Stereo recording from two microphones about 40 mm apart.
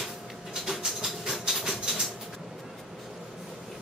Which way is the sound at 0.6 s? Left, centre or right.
Centre.